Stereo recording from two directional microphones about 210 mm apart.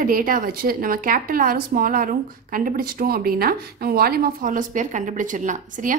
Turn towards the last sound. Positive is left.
turn(degrees=-35)  # may be behind; listen again after turning